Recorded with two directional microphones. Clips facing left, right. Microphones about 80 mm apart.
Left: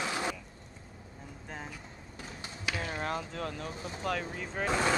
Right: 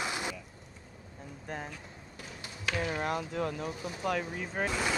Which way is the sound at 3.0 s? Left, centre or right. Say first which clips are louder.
Right 3 dB; centre.